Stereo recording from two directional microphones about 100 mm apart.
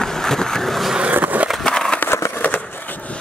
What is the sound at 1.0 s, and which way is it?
Skateboard, 15° right (ahead or behind).